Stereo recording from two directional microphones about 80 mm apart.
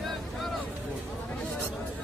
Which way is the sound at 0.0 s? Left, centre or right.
Centre.